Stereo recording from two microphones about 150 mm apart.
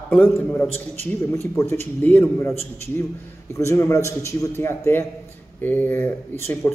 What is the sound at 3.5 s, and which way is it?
A man's voice, 20° left (ahead or behind).